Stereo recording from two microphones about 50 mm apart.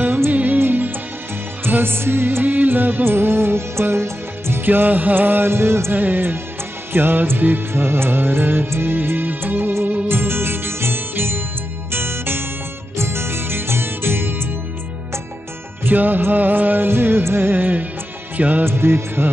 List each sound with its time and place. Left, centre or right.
0.0 s music: right
4.6 s music: right
5.9 s music: right
15.8 s music: right
18.7 s music: right